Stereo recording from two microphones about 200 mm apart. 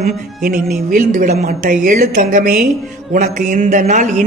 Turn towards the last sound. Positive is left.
turn(degrees=-35)  # may be behind; listen again after turning